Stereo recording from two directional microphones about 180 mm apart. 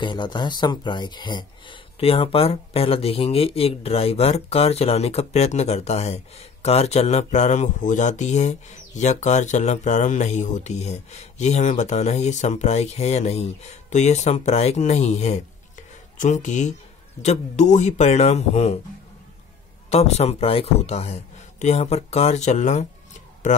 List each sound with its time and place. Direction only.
0.0 s speech: 25° left (ahead or behind)
19.9 s speech: 35° left (ahead or behind)